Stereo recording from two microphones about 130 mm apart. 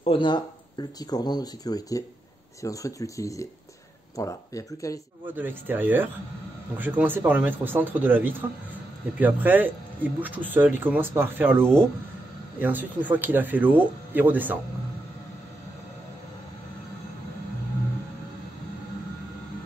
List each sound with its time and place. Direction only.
0.0 s speech: 40° left (ahead or behind); by 5.0 s 25° left (ahead or behind)
5.3 s speech: 15° right (ahead or behind)